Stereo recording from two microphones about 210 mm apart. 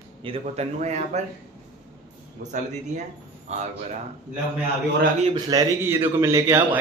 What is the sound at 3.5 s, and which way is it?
Speech, 35° right (ahead or behind).